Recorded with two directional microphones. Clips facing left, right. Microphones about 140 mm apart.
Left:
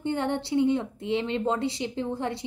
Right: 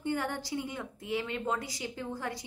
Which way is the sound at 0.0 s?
25° left (ahead or behind).